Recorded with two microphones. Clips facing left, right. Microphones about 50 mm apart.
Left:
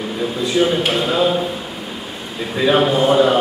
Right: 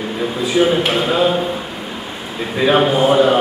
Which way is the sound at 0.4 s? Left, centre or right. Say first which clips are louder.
Right 2 dB; centre.